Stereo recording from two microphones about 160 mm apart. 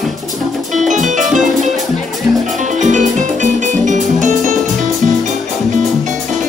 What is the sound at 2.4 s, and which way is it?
Music, 50° right (ahead or behind).